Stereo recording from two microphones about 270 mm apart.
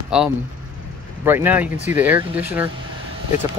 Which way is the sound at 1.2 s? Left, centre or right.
Centre.